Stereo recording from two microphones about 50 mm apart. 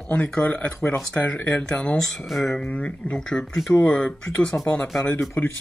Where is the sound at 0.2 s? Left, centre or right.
Centre.